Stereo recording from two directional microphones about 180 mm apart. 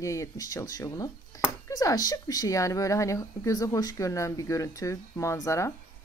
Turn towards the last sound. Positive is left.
turn(degrees=15)  # may be behind; listen again after turning